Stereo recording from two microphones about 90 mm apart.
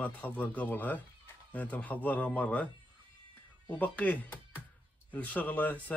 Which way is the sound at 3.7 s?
20° left (ahead or behind).